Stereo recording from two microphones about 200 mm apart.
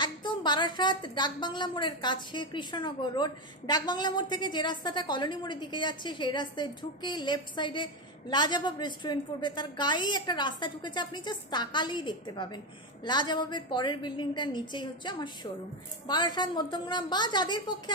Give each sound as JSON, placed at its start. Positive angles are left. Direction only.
{"t": 0.0, "sound": "a woman's voice", "side_deg": 25}